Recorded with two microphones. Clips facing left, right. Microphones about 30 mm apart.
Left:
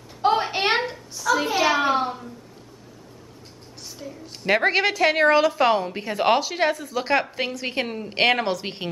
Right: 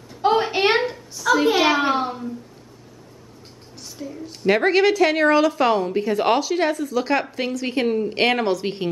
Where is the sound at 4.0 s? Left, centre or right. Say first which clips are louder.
Right 6 dB; centre.